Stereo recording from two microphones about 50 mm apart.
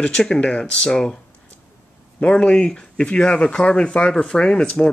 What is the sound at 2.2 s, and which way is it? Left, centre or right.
Speech, centre.